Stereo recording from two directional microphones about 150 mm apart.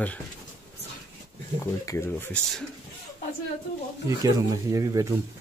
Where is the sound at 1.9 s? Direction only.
15° left (ahead or behind).